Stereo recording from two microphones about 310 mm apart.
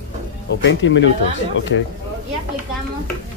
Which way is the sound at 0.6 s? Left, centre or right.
Left.